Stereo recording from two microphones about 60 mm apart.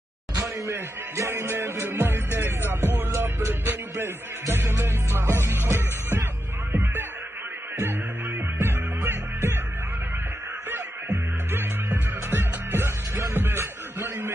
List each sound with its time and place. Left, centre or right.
0.4 s speech: right
2.7 s music: right
8.5 s music: right
11.1 s music: right